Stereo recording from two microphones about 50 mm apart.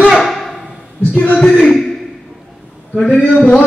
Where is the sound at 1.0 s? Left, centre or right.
Left.